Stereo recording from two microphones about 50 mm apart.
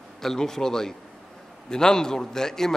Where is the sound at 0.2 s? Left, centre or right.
Centre.